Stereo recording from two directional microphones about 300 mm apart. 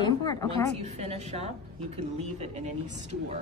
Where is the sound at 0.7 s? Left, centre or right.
Right.